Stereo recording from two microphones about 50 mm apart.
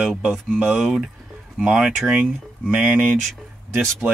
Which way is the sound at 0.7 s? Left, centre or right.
Centre.